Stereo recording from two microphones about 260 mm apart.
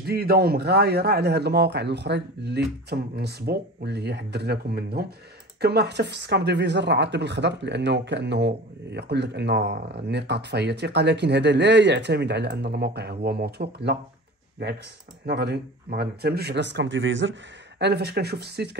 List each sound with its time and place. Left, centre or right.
0.0 s speech: right
15.2 s speech: right